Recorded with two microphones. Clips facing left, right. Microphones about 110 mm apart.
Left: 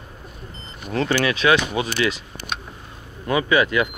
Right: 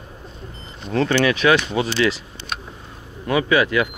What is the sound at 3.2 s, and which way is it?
Speech, 20° left (ahead or behind).